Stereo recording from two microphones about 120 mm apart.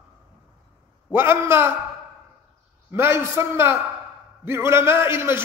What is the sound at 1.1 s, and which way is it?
Speech, 20° right (ahead or behind).